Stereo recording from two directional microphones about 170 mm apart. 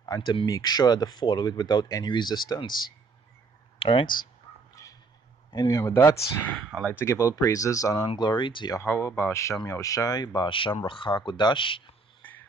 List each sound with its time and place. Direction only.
0.0 s speech: 25° left (ahead or behind)
3.8 s speech: 30° left (ahead or behind)
4.8 s a sound: 20° left (ahead or behind)
5.5 s speech: 25° left (ahead or behind)
8.8 s speech: 15° left (ahead or behind)
12.2 s a sound: 10° left (ahead or behind)